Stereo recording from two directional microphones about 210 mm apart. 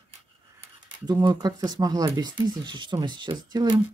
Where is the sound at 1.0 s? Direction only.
20° right (ahead or behind).